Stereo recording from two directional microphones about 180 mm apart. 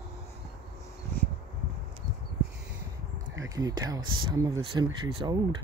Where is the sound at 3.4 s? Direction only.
20° right (ahead or behind).